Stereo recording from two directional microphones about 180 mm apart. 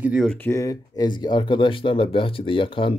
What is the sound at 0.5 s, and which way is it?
Speech, 20° left (ahead or behind).